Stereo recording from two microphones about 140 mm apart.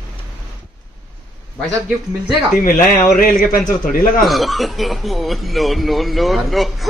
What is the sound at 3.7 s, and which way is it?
Speech, 80° left.